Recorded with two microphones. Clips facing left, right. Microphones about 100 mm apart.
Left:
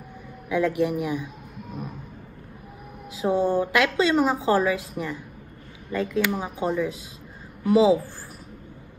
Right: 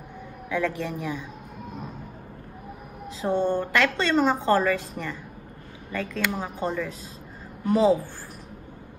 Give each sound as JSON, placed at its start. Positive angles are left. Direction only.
{"t": 0.5, "sound": "speech", "side_deg": 15}
{"t": 3.2, "sound": "speech", "side_deg": 5}
{"t": 5.9, "sound": "a woman's voice", "side_deg": 15}